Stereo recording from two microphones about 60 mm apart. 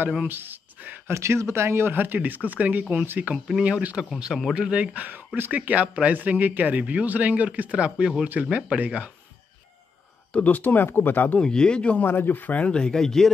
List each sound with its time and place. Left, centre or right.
0.3 s speech: right
1.0 s a man's voice: right
3.4 s speech: centre
4.9 s a man's voice: right
10.3 s speech: left
11.3 s speech: centre
12.0 s speech: left; by 13.3 s centre